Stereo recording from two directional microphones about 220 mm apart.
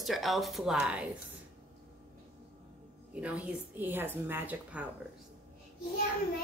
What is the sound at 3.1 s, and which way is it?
A woman's voice, 5° right (ahead or behind).